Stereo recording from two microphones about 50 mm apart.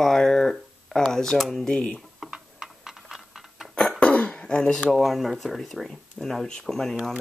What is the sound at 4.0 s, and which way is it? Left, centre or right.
Dishes, left.